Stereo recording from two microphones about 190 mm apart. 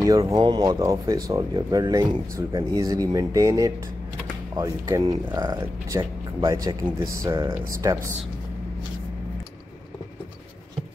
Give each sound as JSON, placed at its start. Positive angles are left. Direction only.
{"t": 0.0, "sound": "speech", "side_deg": -20}